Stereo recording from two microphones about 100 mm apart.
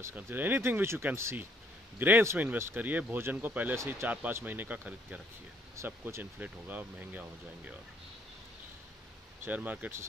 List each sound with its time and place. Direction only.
0.1 s speech: 20° right (ahead or behind)
3.7 s speech: 30° right (ahead or behind)
4.1 s speech: 15° right (ahead or behind)
9.4 s speech: 15° right (ahead or behind)